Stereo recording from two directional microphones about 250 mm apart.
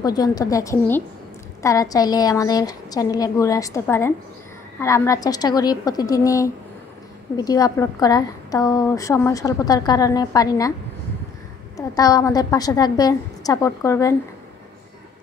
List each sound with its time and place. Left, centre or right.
0.0 s a woman's voice: centre
11.7 s a woman's voice: centre